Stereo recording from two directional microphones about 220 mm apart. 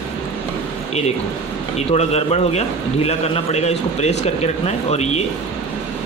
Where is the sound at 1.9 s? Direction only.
30° left (ahead or behind).